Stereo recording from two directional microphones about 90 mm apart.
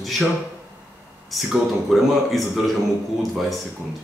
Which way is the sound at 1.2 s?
Centre (ahead or behind).